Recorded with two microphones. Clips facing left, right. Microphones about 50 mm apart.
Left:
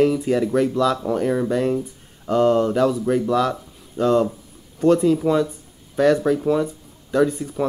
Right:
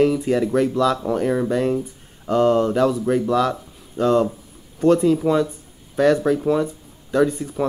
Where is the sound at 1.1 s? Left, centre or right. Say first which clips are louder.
Even; centre.